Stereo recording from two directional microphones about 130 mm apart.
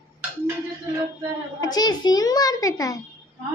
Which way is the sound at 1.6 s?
30° left (ahead or behind).